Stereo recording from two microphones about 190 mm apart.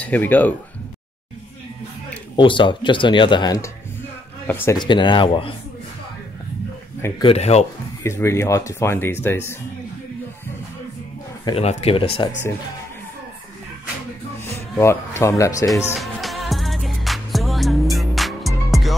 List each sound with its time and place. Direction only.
0.0 s speech: 10° left (ahead or behind)
2.3 s speech: 25° left (ahead or behind)
4.7 s speech: 25° left (ahead or behind)
7.2 s speech: 35° left (ahead or behind)
8.0 s speech: 15° left (ahead or behind)
11.4 s speech: 30° left (ahead or behind)
14.8 s speech: 15° left (ahead or behind)
15.9 s music: centre (ahead or behind)